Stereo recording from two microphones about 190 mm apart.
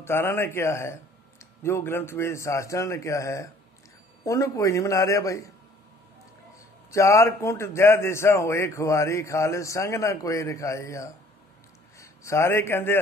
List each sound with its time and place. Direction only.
0.0 s speech: 15° left (ahead or behind)
6.9 s speech: 15° left (ahead or behind)